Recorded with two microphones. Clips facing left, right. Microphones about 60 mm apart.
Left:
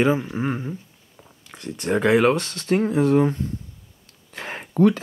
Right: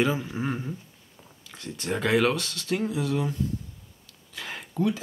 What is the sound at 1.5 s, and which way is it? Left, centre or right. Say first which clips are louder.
Speech: left 5 dB; left.